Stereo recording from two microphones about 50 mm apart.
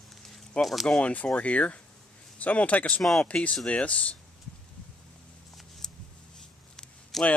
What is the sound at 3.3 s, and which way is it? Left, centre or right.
Speech, left.